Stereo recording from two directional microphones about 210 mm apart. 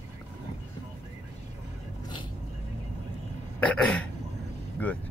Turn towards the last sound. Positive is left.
turn(degrees=5)  # may be behind; listen again after turning